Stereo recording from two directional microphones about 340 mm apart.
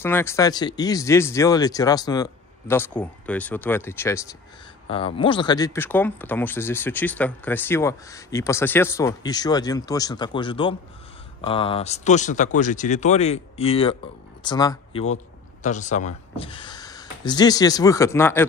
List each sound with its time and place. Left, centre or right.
0.0 s speech: centre